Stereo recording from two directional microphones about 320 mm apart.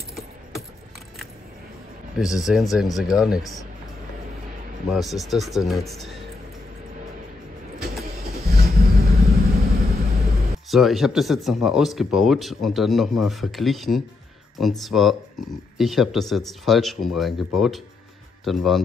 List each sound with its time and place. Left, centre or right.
2.1 s speech: centre
4.9 s speech: centre
8.0 s vehicle: right
10.7 s speech: centre